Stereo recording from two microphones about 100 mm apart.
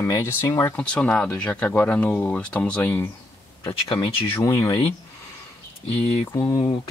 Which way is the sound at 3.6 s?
50° left (ahead or behind).